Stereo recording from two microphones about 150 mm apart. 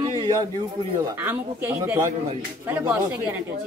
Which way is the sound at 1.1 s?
15° right (ahead or behind).